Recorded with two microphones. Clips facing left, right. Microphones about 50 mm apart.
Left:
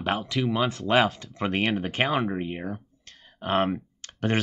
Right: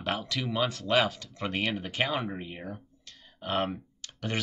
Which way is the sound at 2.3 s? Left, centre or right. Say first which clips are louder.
Left 8 dB; left.